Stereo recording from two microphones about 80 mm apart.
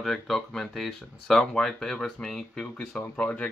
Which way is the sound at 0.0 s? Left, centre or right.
Centre.